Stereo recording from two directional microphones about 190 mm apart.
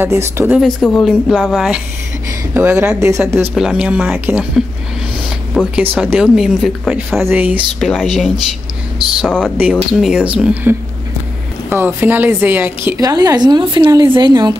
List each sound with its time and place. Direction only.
0.0 s speech: 15° right (ahead or behind)
0.6 s speech: centre (ahead or behind)
2.5 s speech: 10° right (ahead or behind)
3.5 s a woman's voice: 5° right (ahead or behind); by 14.5 s 25° right (ahead or behind)